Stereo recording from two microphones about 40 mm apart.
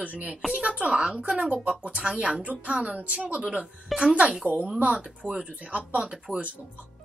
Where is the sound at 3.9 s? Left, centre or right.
Centre.